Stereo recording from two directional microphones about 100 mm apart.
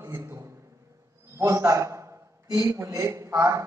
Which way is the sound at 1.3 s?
30° right (ahead or behind).